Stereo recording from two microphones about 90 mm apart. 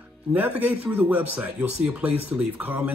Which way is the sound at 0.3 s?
20° right (ahead or behind).